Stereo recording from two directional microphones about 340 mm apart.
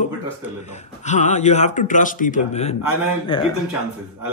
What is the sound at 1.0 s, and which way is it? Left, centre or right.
Speech, left.